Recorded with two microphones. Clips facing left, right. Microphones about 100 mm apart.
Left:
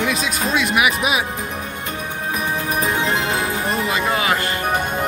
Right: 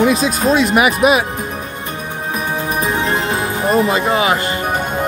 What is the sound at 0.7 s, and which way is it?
Speech, 40° right (ahead or behind).